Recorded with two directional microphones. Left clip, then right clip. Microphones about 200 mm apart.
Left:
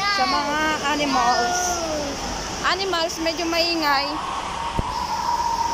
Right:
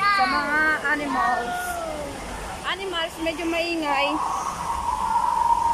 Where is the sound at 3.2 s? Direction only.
Centre (ahead or behind).